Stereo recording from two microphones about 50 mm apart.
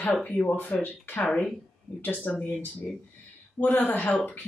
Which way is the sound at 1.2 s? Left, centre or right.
Left.